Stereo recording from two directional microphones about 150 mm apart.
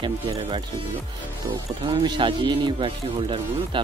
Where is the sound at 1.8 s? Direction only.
30° right (ahead or behind).